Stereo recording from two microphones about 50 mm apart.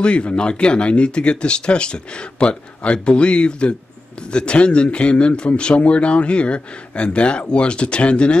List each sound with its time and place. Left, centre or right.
0.0 s speech: left